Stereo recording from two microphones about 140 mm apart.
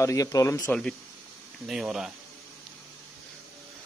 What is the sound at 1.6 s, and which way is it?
Speech, 5° right (ahead or behind).